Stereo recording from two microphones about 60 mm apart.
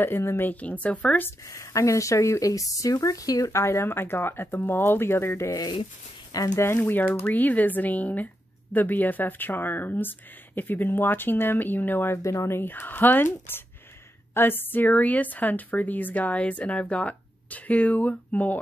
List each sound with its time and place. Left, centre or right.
0.0 s speech: left
0.5 s a woman's voice: left
1.4 s speech: left
3.5 s speech: left
6.3 s speech: left
6.6 s a woman's voice: left
12.2 s speech: left
12.4 s a woman's voice: left